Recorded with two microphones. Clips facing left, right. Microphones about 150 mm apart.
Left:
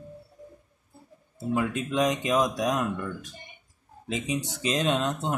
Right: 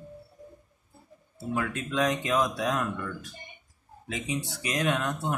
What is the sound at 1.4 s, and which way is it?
Speech, 20° left (ahead or behind).